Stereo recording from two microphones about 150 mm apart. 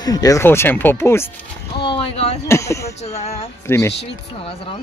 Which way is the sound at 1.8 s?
35° left (ahead or behind).